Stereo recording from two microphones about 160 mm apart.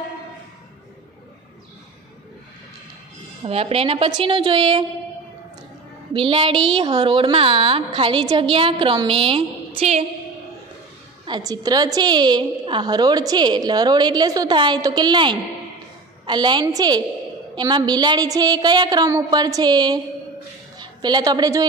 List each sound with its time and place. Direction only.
3.4 s a woman's voice: 40° right (ahead or behind)
6.1 s a woman's voice: 35° right (ahead or behind)
11.2 s a woman's voice: 25° right (ahead or behind)